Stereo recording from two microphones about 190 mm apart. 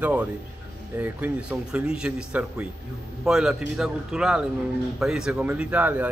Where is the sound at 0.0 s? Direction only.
5° right (ahead or behind).